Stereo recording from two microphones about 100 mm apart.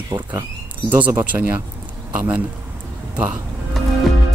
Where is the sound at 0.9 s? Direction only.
15° right (ahead or behind).